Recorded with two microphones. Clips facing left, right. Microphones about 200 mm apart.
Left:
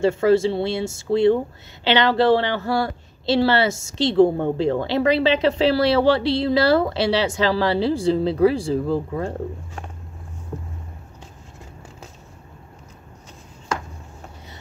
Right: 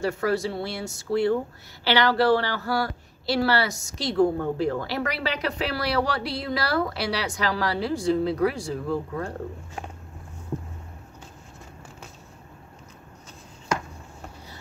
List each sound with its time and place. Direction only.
0.0 s speech: 25° left (ahead or behind)